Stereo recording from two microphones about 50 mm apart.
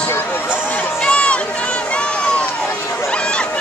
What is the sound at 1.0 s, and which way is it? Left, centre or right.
Run, left.